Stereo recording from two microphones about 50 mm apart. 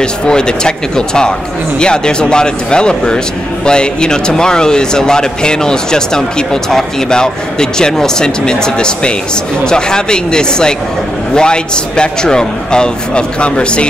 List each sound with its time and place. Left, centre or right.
0.0 s speech: centre